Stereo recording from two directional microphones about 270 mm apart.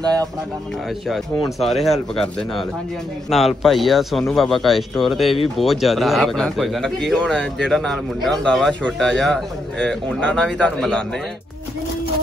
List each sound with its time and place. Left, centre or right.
1.0 s speech: centre